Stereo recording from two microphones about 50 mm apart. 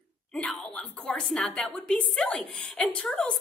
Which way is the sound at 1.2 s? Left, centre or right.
Centre.